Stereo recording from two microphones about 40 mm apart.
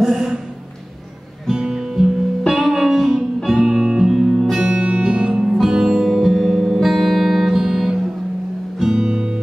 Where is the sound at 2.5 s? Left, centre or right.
Centre.